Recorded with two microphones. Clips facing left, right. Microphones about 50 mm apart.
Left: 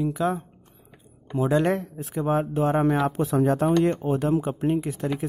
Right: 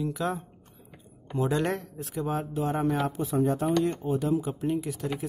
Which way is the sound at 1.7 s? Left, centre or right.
Left.